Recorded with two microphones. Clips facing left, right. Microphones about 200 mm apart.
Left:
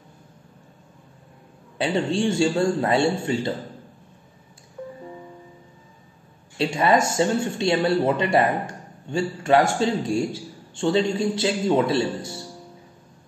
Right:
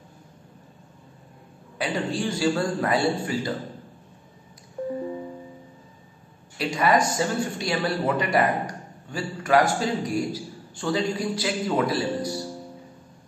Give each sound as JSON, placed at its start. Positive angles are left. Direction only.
{"t": 1.8, "sound": "speech", "side_deg": 25}
{"t": 4.8, "sound": "music", "side_deg": -35}
{"t": 6.6, "sound": "speech", "side_deg": 25}